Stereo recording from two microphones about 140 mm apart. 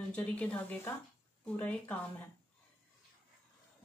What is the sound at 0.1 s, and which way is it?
Speech, 10° left (ahead or behind).